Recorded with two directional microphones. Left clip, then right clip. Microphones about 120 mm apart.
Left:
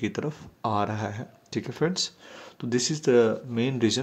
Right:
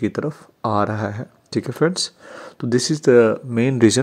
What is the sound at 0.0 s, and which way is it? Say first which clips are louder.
Speech: right 7 dB; 35° right (ahead or behind).